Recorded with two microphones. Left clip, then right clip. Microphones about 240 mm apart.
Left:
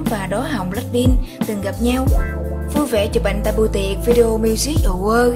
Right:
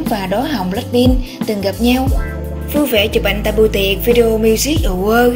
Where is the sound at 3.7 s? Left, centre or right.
Left.